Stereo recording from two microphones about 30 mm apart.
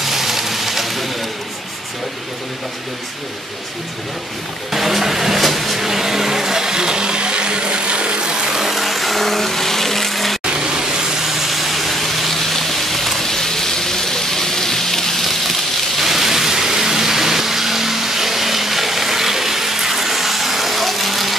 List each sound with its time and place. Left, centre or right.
0.0 s a sound: centre
4.7 s vehicle: centre; by 8.5 s right
8.5 s vehicle: centre
10.5 s vehicle: right; by 13.2 s centre
13.2 s a sound: centre
16.0 s vehicle: centre